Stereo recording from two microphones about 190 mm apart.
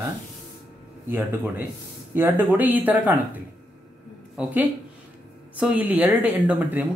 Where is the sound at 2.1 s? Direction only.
10° right (ahead or behind).